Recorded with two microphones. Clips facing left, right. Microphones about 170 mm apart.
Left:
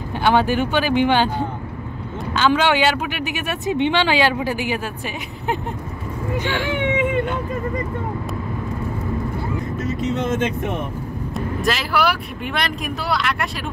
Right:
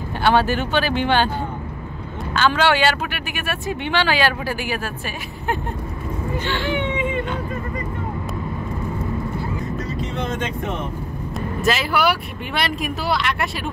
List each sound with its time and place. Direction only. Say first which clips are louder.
0.2 s speech: left 1 dB; 15° left (ahead or behind)
2.3 s speech: left 1 dB; 15° left (ahead or behind)
6.8 s speech: left 3 dB; 75° left (ahead or behind)
9.8 s vehicle: left 4 dB; 25° left (ahead or behind)
11.3 s speech: right 1 dB; centre (ahead or behind)